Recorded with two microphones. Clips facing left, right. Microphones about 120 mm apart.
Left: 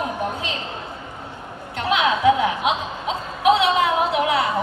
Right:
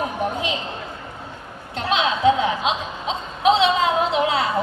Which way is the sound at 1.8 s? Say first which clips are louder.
Left 1 dB; 25° right (ahead or behind).